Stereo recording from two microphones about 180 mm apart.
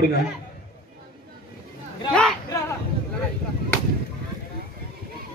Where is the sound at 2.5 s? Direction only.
15° left (ahead or behind).